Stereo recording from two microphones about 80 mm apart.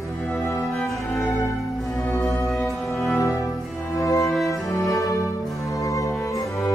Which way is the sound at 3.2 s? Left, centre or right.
Left.